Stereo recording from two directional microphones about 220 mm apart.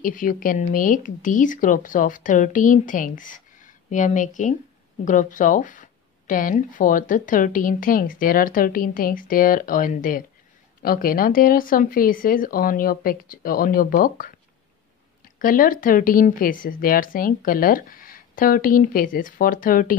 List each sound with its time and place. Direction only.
0.0 s speech: 40° left (ahead or behind)
15.3 s speech: 40° left (ahead or behind)